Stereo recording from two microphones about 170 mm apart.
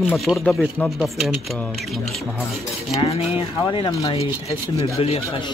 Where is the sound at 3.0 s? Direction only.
35° left (ahead or behind).